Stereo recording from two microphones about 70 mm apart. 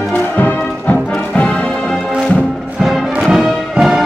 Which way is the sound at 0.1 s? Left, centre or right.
Left.